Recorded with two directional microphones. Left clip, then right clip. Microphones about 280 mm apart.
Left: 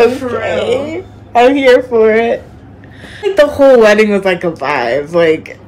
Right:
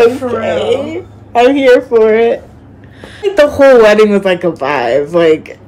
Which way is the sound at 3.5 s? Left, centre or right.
Centre.